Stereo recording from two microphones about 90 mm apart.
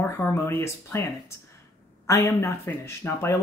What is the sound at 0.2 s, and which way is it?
Speech, 25° left (ahead or behind).